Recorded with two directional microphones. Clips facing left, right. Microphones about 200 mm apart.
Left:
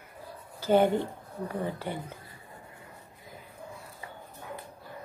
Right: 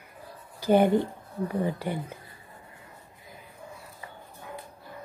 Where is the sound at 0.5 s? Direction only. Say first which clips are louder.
Right 2 dB; 15° right (ahead or behind).